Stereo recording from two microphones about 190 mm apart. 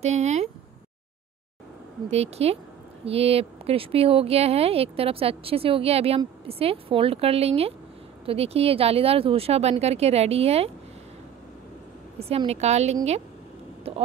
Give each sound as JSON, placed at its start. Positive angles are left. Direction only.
{"t": 0.0, "sound": "speech", "side_deg": -35}
{"t": 2.0, "sound": "speech", "side_deg": -35}
{"t": 12.2, "sound": "speech", "side_deg": -30}
{"t": 13.9, "sound": "a sound", "side_deg": -30}